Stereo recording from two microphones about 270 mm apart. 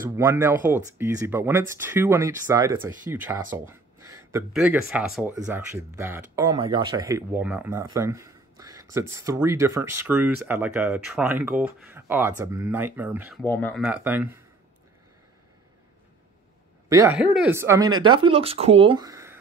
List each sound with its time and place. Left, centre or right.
0.2 s speech: centre
13.4 s speech: centre
16.9 s speech: centre